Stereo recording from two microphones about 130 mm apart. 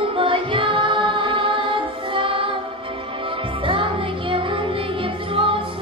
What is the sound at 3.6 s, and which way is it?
Music, 40° right (ahead or behind).